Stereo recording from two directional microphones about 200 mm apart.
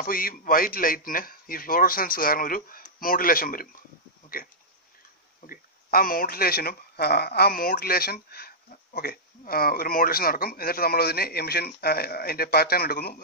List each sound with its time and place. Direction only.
0.0 s speech: 45° left (ahead or behind)
5.5 s speech: 45° left (ahead or behind)